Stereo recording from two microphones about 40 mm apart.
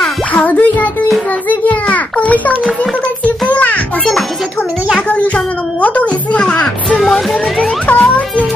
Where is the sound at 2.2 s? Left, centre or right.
Left.